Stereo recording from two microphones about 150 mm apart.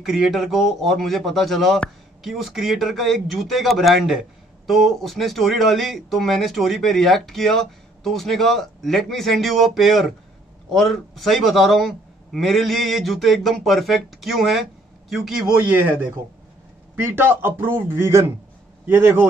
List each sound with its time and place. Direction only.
0.0 s a man's voice: centre (ahead or behind)
16.9 s a man's voice: 15° right (ahead or behind)